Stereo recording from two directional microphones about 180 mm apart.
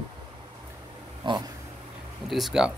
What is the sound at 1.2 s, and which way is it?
Dog, 25° right (ahead or behind).